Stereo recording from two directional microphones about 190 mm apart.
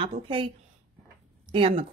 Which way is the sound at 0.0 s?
30° right (ahead or behind).